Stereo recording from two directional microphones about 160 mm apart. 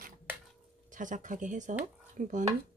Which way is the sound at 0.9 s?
55° right (ahead or behind).